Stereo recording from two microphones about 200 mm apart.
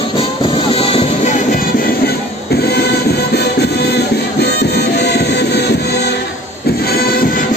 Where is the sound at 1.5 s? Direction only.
45° left (ahead or behind).